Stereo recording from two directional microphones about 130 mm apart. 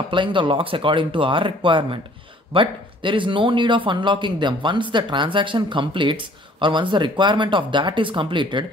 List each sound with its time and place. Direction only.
0.1 s a man's voice: 40° right (ahead or behind)